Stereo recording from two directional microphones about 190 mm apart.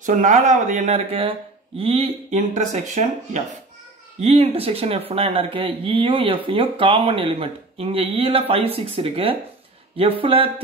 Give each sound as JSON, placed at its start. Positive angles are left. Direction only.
{"t": 0.0, "sound": "speech", "side_deg": -40}